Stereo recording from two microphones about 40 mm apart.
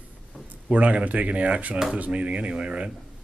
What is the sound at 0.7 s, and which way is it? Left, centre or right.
Speech, right.